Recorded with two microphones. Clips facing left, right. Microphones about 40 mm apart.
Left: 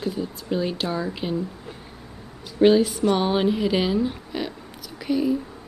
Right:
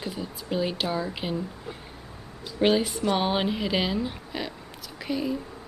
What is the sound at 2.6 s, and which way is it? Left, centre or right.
Speech, centre.